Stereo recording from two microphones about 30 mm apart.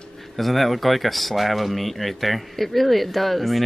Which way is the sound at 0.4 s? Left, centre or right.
Centre.